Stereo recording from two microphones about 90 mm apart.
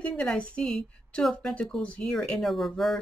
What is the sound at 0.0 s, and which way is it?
A woman's voice, 10° left (ahead or behind).